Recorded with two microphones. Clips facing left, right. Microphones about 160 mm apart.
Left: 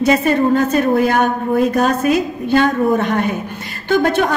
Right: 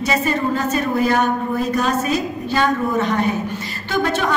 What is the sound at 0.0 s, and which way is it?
A woman's voice, 55° left (ahead or behind).